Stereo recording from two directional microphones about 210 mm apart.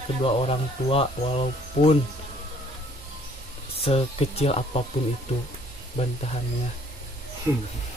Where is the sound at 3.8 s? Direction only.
30° left (ahead or behind).